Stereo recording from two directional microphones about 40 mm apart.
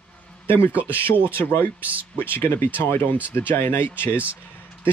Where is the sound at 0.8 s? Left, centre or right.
Left.